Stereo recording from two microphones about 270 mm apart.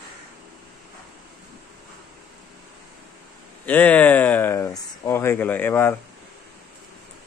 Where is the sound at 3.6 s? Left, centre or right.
Centre.